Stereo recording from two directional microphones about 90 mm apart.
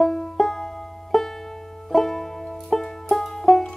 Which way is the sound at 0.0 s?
5° left (ahead or behind).